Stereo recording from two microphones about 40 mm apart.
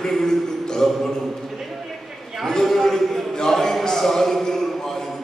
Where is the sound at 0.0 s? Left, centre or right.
Centre.